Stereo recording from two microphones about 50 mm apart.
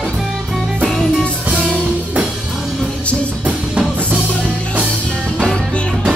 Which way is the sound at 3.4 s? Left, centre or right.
Right.